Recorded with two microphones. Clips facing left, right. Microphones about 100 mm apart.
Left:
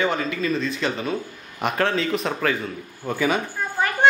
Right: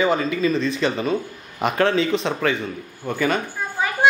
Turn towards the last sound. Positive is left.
turn(degrees=-5)  # may be behind; listen again after turning